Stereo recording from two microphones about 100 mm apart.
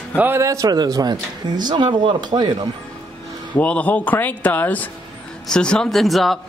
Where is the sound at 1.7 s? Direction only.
55° right (ahead or behind).